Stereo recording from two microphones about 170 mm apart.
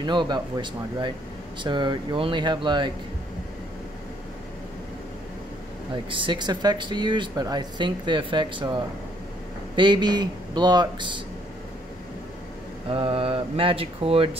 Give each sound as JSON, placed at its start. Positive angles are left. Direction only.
{"t": 0.0, "sound": "speech", "side_deg": -25}
{"t": 6.0, "sound": "speech", "side_deg": -30}
{"t": 12.9, "sound": "mantra", "side_deg": -30}